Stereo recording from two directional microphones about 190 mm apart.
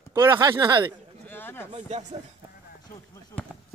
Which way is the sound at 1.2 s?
10° left (ahead or behind).